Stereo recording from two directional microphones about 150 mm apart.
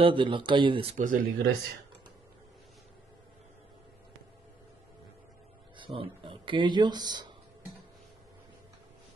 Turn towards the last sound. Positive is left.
turn(degrees=-30)  # may be behind; listen again after turning